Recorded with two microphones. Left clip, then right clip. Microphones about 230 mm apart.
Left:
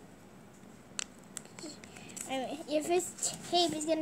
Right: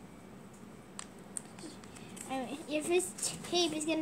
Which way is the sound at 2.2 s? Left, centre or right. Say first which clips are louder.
Left 2 dB; left.